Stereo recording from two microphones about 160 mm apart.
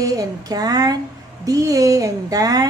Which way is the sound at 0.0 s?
25° right (ahead or behind).